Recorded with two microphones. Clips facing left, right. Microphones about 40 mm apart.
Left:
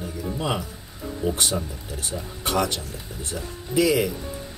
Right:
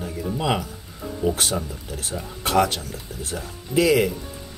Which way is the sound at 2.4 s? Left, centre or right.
Right.